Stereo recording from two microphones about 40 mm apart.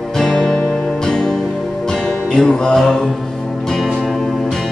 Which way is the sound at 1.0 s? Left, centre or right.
Centre.